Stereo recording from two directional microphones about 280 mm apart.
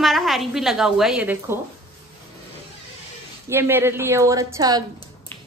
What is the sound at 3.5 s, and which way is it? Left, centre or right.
A woman's voice, centre.